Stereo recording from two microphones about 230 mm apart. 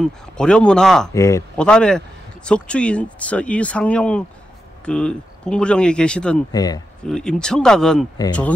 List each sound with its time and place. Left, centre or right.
0.0 s speech: centre
1.1 s speech: centre
6.5 s speech: centre
7.1 s speech: centre